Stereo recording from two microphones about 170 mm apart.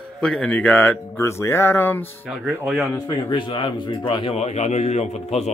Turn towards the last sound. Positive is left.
turn(degrees=40)  # may be behind; listen again after turning